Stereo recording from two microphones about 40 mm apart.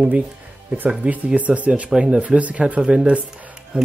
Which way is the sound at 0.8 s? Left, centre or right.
Right.